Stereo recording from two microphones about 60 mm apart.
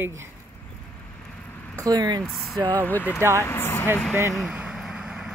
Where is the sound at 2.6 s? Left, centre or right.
Left.